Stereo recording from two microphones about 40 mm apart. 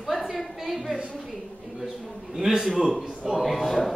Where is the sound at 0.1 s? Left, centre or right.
Centre.